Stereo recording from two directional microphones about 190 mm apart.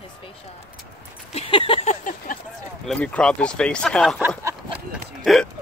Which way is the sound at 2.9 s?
5° left (ahead or behind).